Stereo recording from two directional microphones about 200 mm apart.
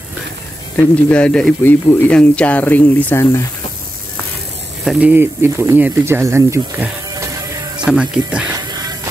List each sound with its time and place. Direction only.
0.7 s speech: 10° left (ahead or behind)
4.8 s speech: 10° right (ahead or behind)
8.5 s music: 20° right (ahead or behind)